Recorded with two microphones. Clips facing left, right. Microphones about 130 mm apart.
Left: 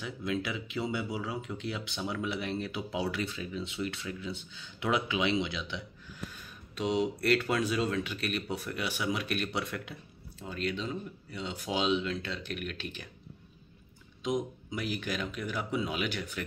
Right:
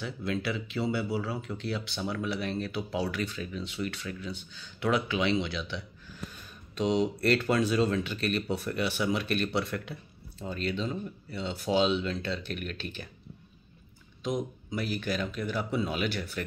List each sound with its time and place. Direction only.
0.0 s speech: 10° left (ahead or behind)
0.7 s speech: centre (ahead or behind)
1.2 s speech: 15° left (ahead or behind)
6.7 s speech: 5° left (ahead or behind)
14.2 s speech: 15° left (ahead or behind)